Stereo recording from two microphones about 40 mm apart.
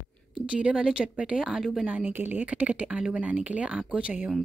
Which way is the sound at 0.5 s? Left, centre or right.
Right.